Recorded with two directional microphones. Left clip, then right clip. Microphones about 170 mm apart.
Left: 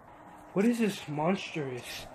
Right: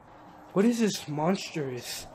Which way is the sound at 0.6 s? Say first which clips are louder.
Right 3 dB; 20° right (ahead or behind).